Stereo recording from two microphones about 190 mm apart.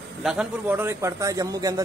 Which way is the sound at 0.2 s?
5° right (ahead or behind).